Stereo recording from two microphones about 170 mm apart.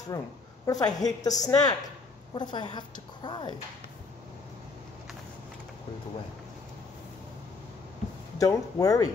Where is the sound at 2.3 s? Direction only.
25° left (ahead or behind).